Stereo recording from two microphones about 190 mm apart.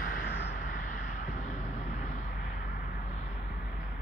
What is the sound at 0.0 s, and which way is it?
Vehicle, 50° left (ahead or behind).